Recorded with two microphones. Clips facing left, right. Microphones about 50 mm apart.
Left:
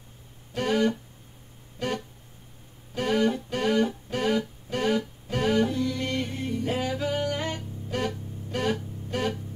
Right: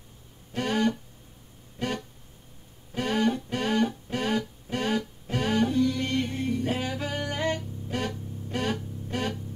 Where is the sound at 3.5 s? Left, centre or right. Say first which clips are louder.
Left 2 dB; left.